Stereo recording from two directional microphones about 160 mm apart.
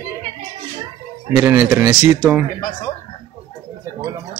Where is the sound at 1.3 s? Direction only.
15° right (ahead or behind).